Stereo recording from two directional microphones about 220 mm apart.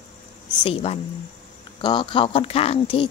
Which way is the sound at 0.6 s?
25° left (ahead or behind).